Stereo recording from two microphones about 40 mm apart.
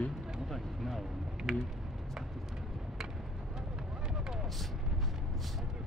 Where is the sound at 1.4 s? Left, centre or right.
Centre.